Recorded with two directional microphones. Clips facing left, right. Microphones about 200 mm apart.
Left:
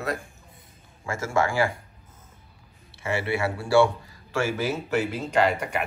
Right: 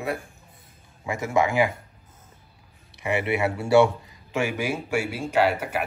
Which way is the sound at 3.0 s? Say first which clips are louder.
Right 2 dB; 20° right (ahead or behind).